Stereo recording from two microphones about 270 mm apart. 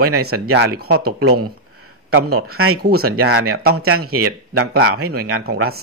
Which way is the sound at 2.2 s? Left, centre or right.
Right.